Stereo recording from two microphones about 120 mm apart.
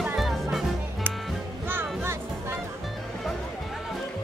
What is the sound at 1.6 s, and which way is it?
Music, 20° right (ahead or behind).